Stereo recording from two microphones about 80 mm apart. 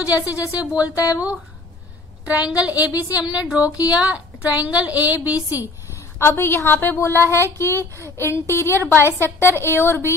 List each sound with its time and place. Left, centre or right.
0.5 s a woman's voice: centre
6.1 s a woman's voice: left